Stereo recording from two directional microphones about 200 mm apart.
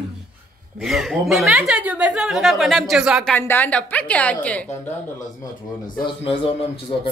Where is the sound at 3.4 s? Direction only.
10° left (ahead or behind).